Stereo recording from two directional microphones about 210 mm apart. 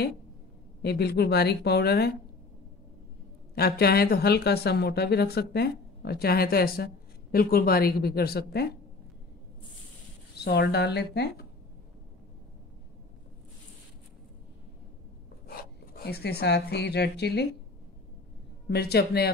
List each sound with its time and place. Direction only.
0.8 s speech: 50° left (ahead or behind)
3.5 s speech: 50° left (ahead or behind)
10.3 s speech: 50° left (ahead or behind)
15.4 s speech: 45° left (ahead or behind)
18.7 s speech: 50° left (ahead or behind)